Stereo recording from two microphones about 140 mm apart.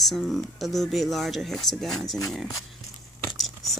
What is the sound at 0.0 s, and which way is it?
Speech, centre (ahead or behind).